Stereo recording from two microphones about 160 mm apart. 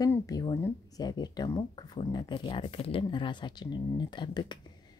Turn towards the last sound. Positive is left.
turn(degrees=30)  # may be behind; listen again after turning